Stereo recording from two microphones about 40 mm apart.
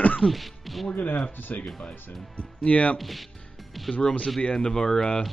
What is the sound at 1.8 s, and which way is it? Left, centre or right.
Speech, left.